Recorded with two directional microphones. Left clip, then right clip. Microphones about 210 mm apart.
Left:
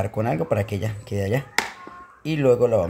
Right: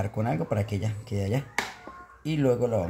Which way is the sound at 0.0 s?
15° left (ahead or behind).